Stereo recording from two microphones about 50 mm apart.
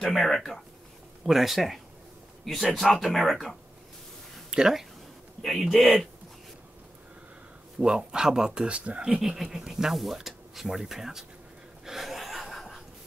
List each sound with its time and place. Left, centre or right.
0.0 s speech: centre
1.2 s speech: centre
4.5 s speech: centre
5.4 s speech: centre
7.8 s speech: centre
9.4 s speech: centre
11.8 s chuckle: centre